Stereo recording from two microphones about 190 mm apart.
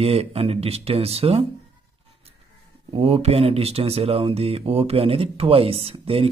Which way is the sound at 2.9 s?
35° right (ahead or behind).